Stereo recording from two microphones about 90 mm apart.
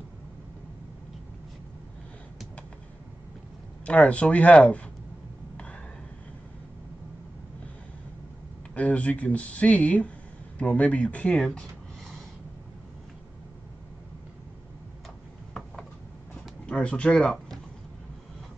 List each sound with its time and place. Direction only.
3.8 s speech: 15° left (ahead or behind)
8.7 s speech: 15° left (ahead or behind)
11.3 s speech: 5° left (ahead or behind)
16.6 s speech: 10° left (ahead or behind)